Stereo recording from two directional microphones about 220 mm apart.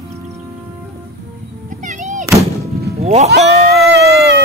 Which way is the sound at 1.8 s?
35° right (ahead or behind).